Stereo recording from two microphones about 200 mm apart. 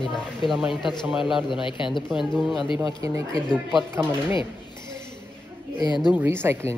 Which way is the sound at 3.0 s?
15° right (ahead or behind).